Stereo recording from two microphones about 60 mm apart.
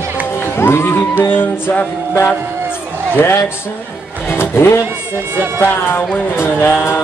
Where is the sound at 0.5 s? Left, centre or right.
Left.